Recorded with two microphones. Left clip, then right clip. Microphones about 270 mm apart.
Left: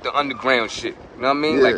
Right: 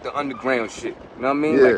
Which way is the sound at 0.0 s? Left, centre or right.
Centre.